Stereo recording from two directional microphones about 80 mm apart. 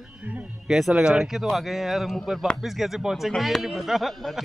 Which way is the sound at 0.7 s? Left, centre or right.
Centre.